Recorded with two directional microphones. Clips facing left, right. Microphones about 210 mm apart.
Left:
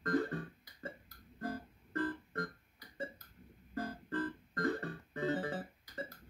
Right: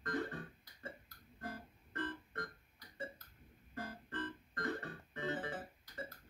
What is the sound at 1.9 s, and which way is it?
Keyboard, 35° left (ahead or behind).